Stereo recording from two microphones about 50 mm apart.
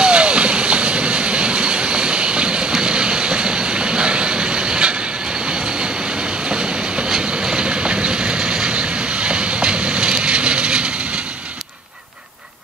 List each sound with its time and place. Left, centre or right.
0.0 s vehicle: right
5.5 s train: centre
7.4 s vehicle: centre